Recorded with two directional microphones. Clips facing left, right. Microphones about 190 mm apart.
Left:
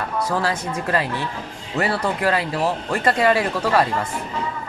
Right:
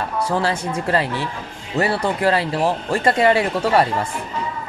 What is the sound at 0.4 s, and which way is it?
Speech, 30° right (ahead or behind).